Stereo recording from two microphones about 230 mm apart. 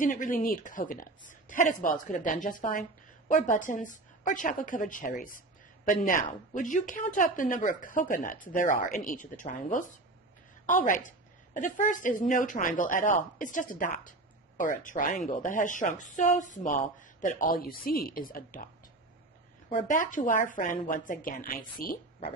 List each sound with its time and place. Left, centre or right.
0.0 s a woman's voice: left
19.7 s a woman's voice: left